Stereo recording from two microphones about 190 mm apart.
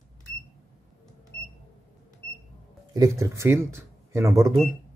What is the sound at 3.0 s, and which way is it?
Speech, 15° right (ahead or behind).